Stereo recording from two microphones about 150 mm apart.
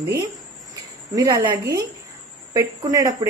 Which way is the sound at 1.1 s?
25° right (ahead or behind).